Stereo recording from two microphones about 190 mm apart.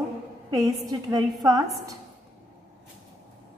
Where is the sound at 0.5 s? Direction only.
20° right (ahead or behind).